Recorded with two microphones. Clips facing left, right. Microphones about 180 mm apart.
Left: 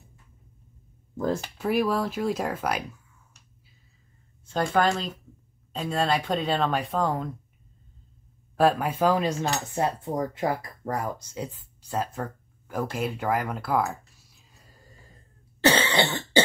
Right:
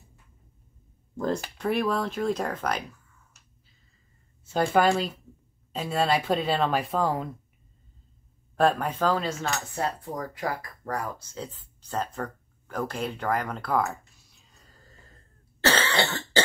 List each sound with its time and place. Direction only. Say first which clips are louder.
1.1 s speech: left 1 dB; 5° left (ahead or behind)
4.5 s speech: right 2 dB; 5° right (ahead or behind)
8.5 s speech: left 2 dB; 5° left (ahead or behind)
15.6 s cough: left 3 dB; 15° left (ahead or behind)